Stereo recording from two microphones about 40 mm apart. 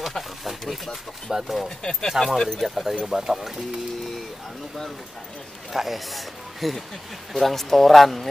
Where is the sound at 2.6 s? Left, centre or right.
Centre.